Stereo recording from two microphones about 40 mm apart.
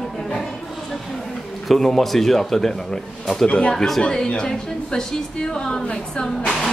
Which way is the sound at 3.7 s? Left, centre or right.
Centre.